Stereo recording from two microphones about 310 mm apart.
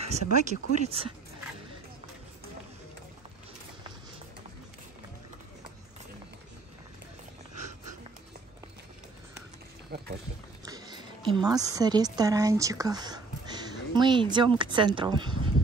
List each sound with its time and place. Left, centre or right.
0.0 s speech: right
10.6 s a woman's voice: centre